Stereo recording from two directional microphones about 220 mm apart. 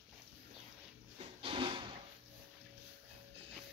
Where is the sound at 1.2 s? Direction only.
25° right (ahead or behind).